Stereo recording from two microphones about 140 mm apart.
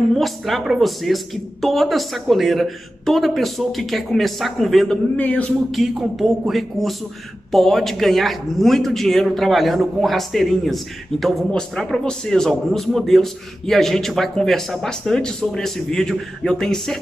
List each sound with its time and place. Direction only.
0.1 s a man's voice: centre (ahead or behind)